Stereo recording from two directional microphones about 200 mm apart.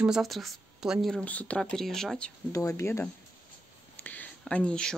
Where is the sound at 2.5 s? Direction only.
15° left (ahead or behind).